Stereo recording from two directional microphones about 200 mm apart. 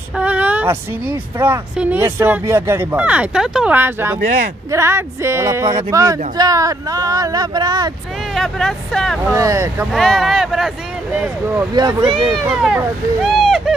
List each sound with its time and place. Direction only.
0.2 s speech: 5° right (ahead or behind)
8.4 s speech: centre (ahead or behind)
9.3 s speech: 15° right (ahead or behind)
9.9 s speech: centre (ahead or behind); by 11.9 s 15° right (ahead or behind)
12.4 s speech: 5° right (ahead or behind)